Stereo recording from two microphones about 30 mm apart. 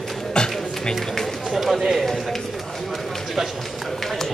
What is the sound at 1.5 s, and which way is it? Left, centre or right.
Speech, centre.